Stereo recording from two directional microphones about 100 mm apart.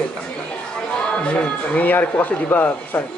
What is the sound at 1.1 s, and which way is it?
Speech, 10° left (ahead or behind).